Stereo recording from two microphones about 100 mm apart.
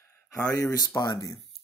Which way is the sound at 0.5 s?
35° left (ahead or behind).